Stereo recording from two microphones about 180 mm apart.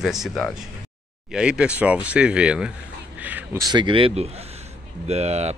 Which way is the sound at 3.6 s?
25° right (ahead or behind).